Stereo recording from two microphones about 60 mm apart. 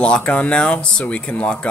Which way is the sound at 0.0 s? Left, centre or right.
Centre.